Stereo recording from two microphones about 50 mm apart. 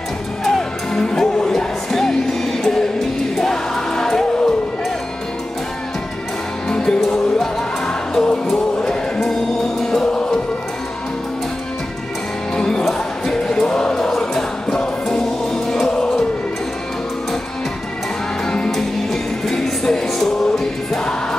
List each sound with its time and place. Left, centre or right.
0.4 s music: centre
6.7 s music: centre
12.5 s music: centre
13.9 s music: centre
19.4 s music: centre